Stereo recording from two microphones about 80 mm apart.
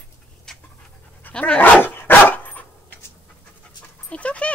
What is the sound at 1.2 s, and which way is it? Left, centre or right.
Dog, centre.